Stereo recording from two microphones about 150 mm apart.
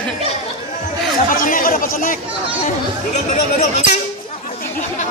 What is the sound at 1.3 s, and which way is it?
Chatter, 65° left (ahead or behind).